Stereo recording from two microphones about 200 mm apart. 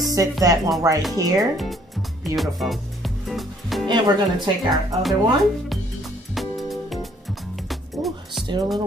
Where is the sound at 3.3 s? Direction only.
Centre (ahead or behind).